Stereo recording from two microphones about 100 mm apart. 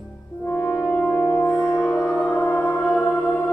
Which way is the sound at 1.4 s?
25° left (ahead or behind).